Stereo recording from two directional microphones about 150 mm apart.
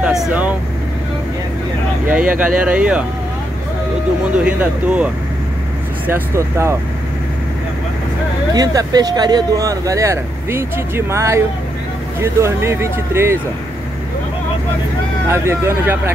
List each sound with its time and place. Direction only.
0.0 s speech: 5° right (ahead or behind)
2.0 s speech: 10° right (ahead or behind)
4.5 s speech: 10° right (ahead or behind)
8.5 s speech: 25° right (ahead or behind)
15.2 s speech: 20° right (ahead or behind)